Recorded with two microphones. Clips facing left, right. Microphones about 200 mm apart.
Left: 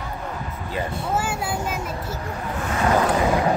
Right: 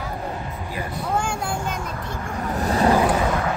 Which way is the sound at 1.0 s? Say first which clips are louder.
Right 3 dB; 5° left (ahead or behind).